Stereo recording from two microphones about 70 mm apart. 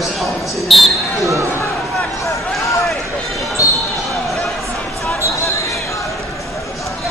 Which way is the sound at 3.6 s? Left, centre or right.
Left.